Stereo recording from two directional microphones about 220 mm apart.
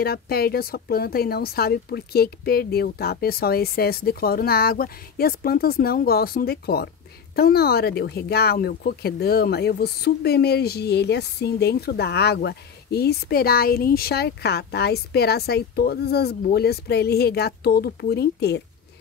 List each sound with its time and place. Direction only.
0.0 s speech: 45° left (ahead or behind)